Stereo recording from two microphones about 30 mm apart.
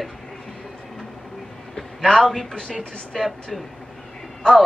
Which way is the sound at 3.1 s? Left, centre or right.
Centre.